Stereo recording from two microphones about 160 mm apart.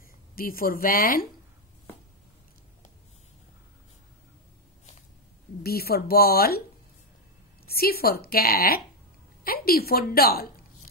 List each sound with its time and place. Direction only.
0.4 s speech: 65° left (ahead or behind)
5.6 s a woman's voice: 75° left (ahead or behind)
7.6 s a woman's voice: 70° left (ahead or behind)